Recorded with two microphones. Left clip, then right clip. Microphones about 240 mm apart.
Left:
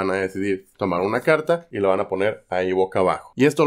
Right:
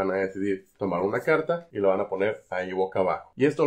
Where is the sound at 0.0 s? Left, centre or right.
Left.